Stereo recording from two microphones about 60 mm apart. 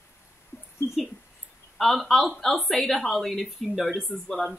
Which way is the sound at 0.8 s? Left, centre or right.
Left.